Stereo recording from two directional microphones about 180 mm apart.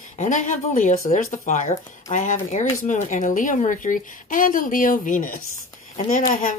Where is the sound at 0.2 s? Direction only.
40° left (ahead or behind).